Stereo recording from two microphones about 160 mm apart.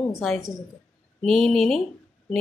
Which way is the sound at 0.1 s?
Centre (ahead or behind).